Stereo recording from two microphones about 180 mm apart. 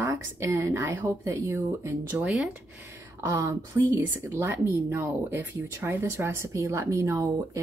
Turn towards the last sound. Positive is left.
turn(degrees=-15)  # may be behind; listen again after turning